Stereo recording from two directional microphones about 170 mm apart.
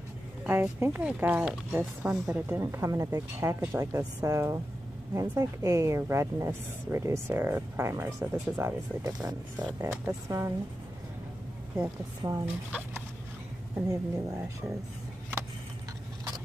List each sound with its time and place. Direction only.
0.4 s speech: 10° right (ahead or behind)
12.2 s a woman's voice: 20° right (ahead or behind)
13.7 s a woman's voice: 20° right (ahead or behind)